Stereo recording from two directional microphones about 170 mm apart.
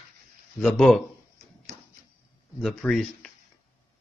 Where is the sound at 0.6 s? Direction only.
Centre (ahead or behind).